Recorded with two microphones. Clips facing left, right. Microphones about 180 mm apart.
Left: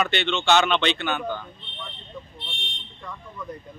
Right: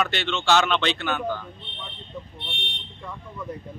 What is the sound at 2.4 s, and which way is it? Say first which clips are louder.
Vehicle: right 3 dB; 60° right (ahead or behind).